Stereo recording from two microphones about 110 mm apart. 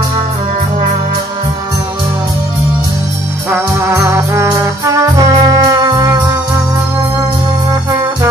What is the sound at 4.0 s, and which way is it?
Music, 25° right (ahead or behind).